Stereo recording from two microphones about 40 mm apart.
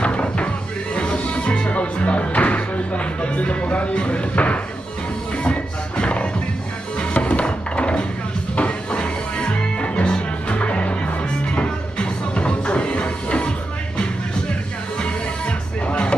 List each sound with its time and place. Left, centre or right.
0.0 s music: left
15.0 s music: left